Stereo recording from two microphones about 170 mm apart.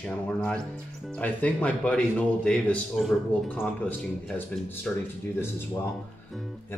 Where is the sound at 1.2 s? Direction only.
10° left (ahead or behind).